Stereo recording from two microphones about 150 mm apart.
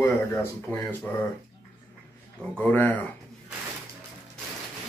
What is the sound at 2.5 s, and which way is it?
Speech, 10° left (ahead or behind).